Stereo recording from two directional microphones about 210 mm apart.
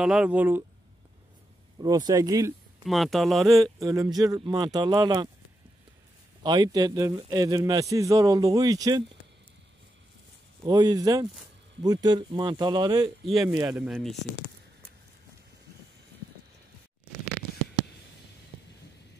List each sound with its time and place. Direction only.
0.0 s a man's voice: 5° right (ahead or behind)
1.8 s a man's voice: 20° right (ahead or behind)
2.8 s speech: centre (ahead or behind)
3.8 s a man's voice: 15° right (ahead or behind)
6.4 s a man's voice: 20° right (ahead or behind)
10.6 s a man's voice: 20° right (ahead or behind)
13.2 s speech: centre (ahead or behind)